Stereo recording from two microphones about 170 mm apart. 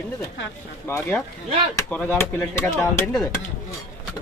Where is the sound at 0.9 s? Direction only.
15° left (ahead or behind).